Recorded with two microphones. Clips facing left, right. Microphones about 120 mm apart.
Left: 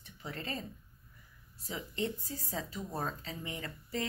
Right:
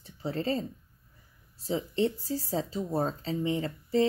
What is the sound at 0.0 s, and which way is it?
Speech, 30° right (ahead or behind).